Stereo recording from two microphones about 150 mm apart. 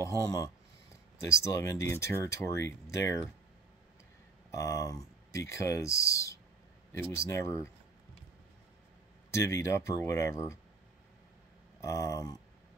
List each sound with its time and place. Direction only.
0.0 s speech: 20° left (ahead or behind)
4.5 s speech: 20° left (ahead or behind)
9.3 s speech: 20° left (ahead or behind)
11.8 s speech: 20° left (ahead or behind)